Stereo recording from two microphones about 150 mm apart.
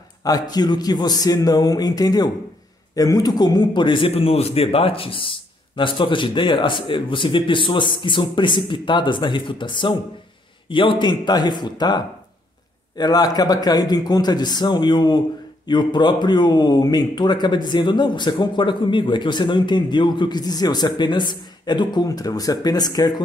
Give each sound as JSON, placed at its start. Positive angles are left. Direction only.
{"t": 0.2, "sound": "a man's voice", "side_deg": 25}